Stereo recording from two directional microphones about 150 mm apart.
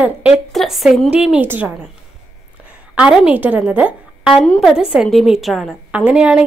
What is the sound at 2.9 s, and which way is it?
A woman's voice, 5° right (ahead or behind).